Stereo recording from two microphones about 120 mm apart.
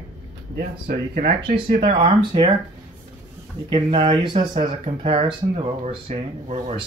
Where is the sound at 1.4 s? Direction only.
45° right (ahead or behind).